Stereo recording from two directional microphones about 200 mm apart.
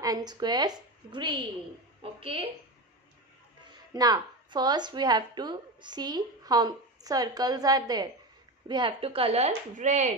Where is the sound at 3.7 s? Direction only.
20° right (ahead or behind); by 10.1 s 35° right (ahead or behind).